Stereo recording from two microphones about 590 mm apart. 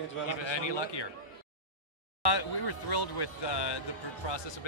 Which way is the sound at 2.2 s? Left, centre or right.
Left.